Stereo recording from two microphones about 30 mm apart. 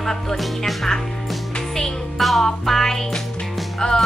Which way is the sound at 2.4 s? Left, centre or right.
Centre.